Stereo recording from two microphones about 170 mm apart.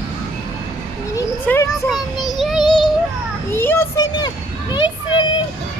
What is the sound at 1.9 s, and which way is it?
Child singing, centre (ahead or behind).